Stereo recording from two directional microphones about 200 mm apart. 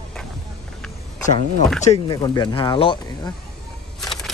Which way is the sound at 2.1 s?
20° left (ahead or behind).